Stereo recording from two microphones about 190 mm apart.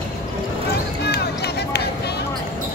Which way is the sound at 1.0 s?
60° left (ahead or behind).